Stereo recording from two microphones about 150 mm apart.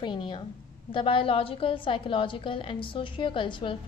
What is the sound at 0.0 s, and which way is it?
A woman's voice, 30° left (ahead or behind).